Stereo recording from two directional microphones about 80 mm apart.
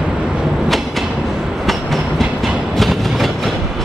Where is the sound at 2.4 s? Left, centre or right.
Centre.